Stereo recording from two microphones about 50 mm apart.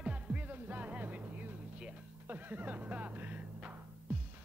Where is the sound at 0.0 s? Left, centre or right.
Right.